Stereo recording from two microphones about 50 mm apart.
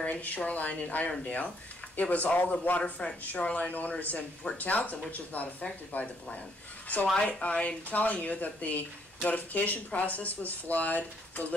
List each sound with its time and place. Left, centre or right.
0.0 s speech: left
2.8 s speech: centre
7.2 s speech: centre
7.4 s speech: left